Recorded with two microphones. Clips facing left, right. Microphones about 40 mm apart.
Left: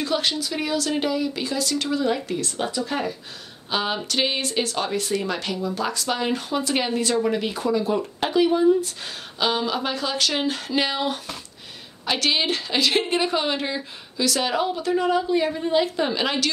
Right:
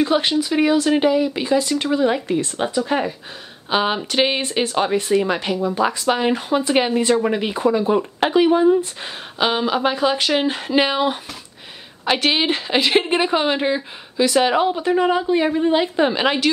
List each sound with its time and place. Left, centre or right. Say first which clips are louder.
0.0 s a woman's voice: right 6 dB; right